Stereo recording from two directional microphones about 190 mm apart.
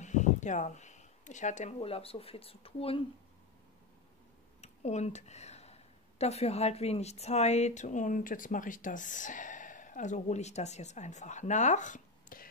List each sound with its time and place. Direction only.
0.0 s speech: 40° left (ahead or behind)
4.6 s speech: 35° left (ahead or behind)